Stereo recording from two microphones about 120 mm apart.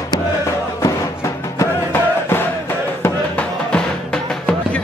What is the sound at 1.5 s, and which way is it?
Music, 20° left (ahead or behind).